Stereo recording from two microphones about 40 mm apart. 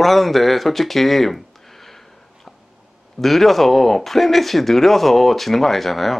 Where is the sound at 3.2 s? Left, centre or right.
Centre.